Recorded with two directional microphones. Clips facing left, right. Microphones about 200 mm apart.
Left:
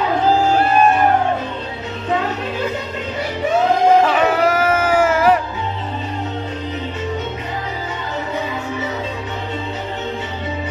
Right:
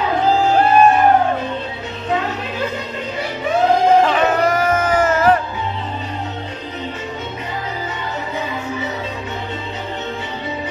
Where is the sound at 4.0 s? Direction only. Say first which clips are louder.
Even; 10° left (ahead or behind).